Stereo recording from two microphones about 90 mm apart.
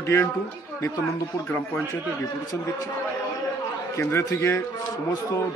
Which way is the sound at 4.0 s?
30° left (ahead or behind).